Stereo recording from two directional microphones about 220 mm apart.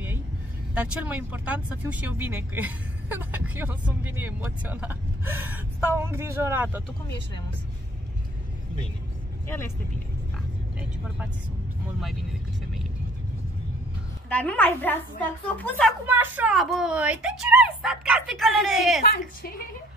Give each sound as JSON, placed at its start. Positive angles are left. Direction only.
{"t": 0.7, "sound": "speech", "side_deg": -5}
{"t": 14.3, "sound": "a woman's voice", "side_deg": 5}
{"t": 16.1, "sound": "speech", "side_deg": -10}
{"t": 18.9, "sound": "a woman's voice", "side_deg": 40}